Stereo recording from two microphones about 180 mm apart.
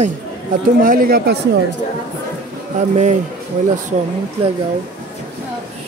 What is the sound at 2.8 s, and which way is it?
Speech, 45° right (ahead or behind).